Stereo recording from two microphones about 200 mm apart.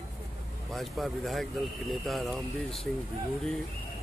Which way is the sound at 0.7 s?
Centre (ahead or behind).